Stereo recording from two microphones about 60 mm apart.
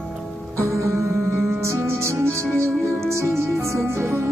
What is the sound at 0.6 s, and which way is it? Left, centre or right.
Music, right.